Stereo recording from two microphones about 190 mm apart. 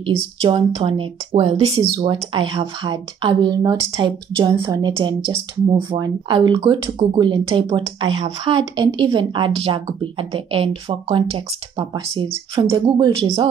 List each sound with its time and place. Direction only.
0.0 s speech: 30° right (ahead or behind)